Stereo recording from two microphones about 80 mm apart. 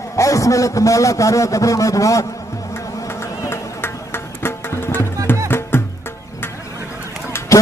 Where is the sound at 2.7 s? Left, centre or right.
Left.